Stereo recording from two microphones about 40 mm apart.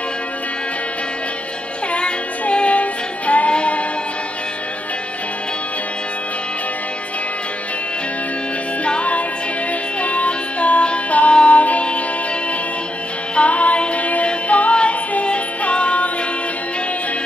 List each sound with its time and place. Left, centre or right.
2.0 s music: left
8.8 s music: left
13.4 s music: left